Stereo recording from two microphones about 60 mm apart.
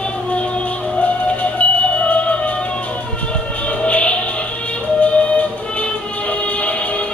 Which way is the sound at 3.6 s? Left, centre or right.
Left.